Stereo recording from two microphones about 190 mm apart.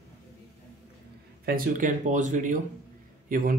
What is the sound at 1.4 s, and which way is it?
Speech, 50° right (ahead or behind).